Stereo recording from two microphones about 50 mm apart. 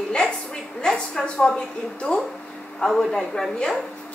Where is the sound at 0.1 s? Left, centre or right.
Centre.